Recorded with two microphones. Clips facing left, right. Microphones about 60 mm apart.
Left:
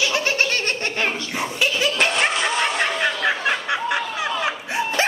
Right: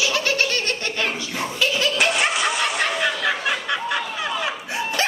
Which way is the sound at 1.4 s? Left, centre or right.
Centre.